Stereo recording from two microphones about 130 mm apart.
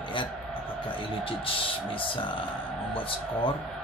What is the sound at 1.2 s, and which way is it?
Speech, 45° left (ahead or behind).